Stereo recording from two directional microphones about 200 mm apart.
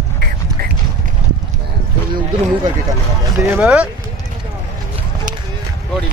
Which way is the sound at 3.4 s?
5° right (ahead or behind).